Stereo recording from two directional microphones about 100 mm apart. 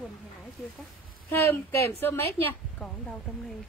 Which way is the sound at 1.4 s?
30° left (ahead or behind).